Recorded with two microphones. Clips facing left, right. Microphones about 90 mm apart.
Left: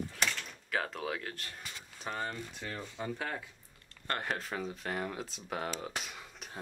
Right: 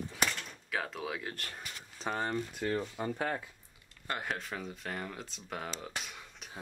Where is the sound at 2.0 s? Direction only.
25° right (ahead or behind).